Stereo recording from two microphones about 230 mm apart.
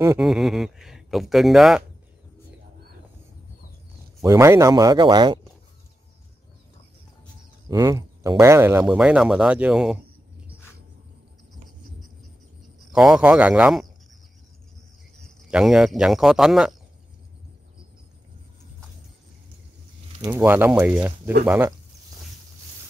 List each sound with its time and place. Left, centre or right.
0.0 s speech: centre
4.2 s speech: centre
7.7 s speech: centre
12.9 s speech: centre
15.2 s speech: centre
20.3 s speech: centre